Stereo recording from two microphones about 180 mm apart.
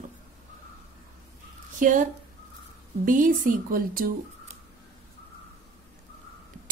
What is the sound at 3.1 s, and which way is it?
Speech, 50° right (ahead or behind).